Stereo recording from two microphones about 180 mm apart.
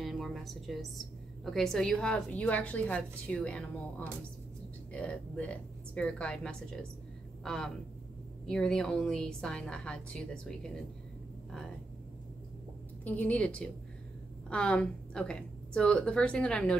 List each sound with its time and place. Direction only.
0.0 s a woman's voice: centre (ahead or behind)
13.0 s a woman's voice: 10° left (ahead or behind)